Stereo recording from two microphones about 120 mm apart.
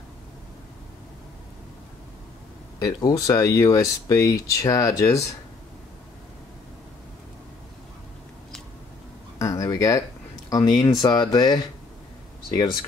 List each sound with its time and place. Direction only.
2.8 s speech: 35° left (ahead or behind)
9.4 s speech: 30° left (ahead or behind)